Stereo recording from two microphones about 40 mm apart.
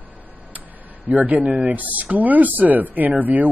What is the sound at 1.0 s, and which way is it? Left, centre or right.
A man's voice, right.